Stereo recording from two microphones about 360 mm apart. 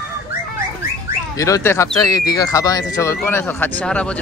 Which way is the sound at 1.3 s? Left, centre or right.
Centre.